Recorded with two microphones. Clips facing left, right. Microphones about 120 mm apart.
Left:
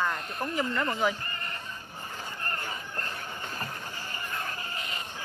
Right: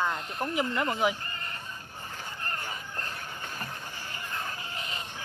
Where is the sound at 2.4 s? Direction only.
15° right (ahead or behind).